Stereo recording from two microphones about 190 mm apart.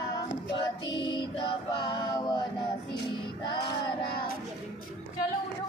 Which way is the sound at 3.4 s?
20° left (ahead or behind).